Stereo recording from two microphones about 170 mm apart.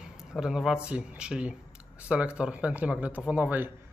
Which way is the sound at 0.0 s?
5° right (ahead or behind).